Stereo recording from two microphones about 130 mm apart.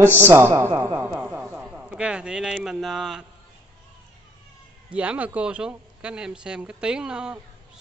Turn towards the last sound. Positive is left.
turn(degrees=-5)  # may be behind; listen again after turning